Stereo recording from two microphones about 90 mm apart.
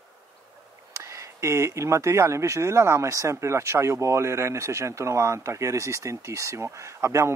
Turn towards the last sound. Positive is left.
turn(degrees=-35)  # may be behind; listen again after turning